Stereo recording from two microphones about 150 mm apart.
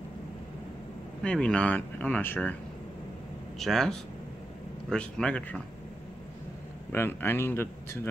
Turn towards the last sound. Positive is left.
turn(degrees=15)  # may be behind; listen again after turning